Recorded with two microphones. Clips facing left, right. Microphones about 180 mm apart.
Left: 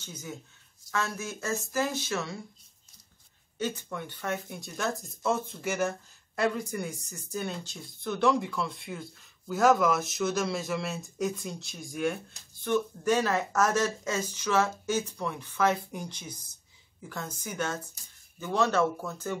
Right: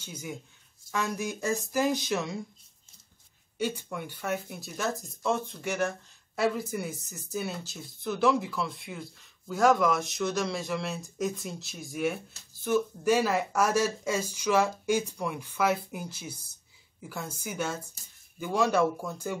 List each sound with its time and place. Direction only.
0.0 s speech: 10° right (ahead or behind)
3.5 s speech: 10° right (ahead or behind)